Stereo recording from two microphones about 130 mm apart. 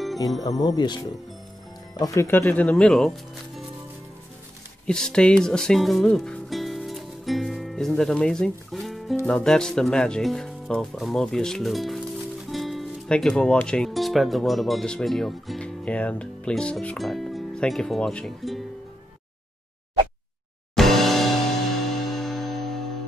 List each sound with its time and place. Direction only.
0.4 s speech: 30° left (ahead or behind)
2.0 s speech: 20° left (ahead or behind); by 3.6 s centre (ahead or behind)
4.8 s speech: 5° left (ahead or behind)
20.7 s music: centre (ahead or behind)
22.0 s a sound: centre (ahead or behind)